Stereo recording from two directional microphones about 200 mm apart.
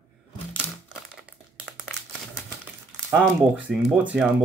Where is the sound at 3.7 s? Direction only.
Centre (ahead or behind).